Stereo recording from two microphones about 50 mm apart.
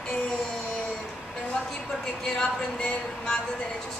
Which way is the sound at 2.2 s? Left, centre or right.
Left.